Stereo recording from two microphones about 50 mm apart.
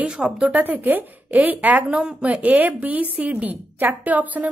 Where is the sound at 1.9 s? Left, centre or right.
Centre.